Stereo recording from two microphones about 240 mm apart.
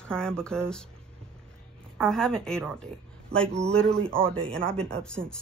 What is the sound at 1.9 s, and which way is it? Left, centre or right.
Speech, centre.